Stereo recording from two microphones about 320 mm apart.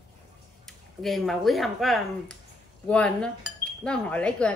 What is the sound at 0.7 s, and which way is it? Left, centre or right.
Speech, centre.